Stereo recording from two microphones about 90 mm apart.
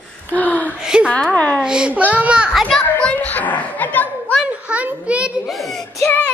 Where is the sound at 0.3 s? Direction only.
15° left (ahead or behind).